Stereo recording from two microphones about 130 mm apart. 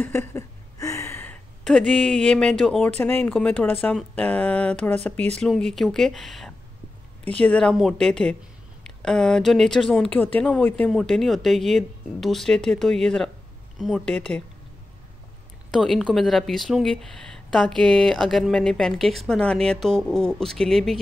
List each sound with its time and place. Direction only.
0.0 s a sound: 20° left (ahead or behind)
1.6 s speech: 5° left (ahead or behind)
3.0 s speech: 15° left (ahead or behind)
15.8 s speech: 5° left (ahead or behind)